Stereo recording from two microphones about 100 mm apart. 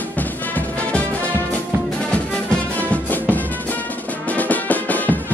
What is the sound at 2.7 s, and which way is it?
Music, 15° left (ahead or behind).